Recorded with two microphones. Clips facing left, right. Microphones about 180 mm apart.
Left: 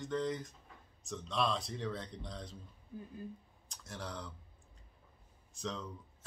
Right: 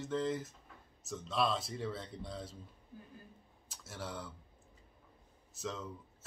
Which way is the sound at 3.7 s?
5° right (ahead or behind).